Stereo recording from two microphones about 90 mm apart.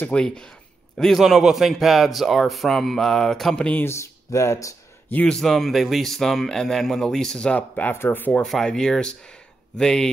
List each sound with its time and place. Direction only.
0.0 s speech: 10° left (ahead or behind)
3.8 s speech: 30° left (ahead or behind)
5.1 s speech: 10° left (ahead or behind)
8.5 s speech: 5° left (ahead or behind)